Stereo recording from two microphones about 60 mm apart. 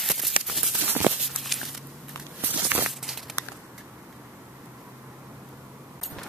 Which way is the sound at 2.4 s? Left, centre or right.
Right.